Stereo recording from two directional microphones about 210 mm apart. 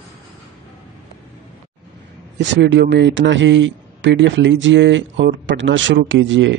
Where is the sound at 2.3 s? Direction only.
55° right (ahead or behind).